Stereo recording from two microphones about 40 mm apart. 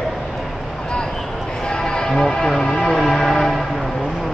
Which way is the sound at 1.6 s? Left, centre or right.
Centre.